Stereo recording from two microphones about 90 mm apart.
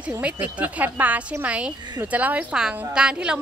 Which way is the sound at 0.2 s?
15° right (ahead or behind).